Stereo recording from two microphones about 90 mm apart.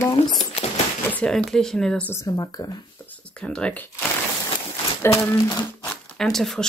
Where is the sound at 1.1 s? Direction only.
10° left (ahead or behind).